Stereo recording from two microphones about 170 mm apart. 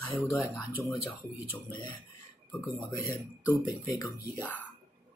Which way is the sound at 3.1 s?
10° right (ahead or behind).